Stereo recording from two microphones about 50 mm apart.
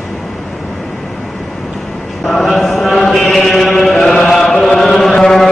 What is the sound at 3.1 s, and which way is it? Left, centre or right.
Chant, centre.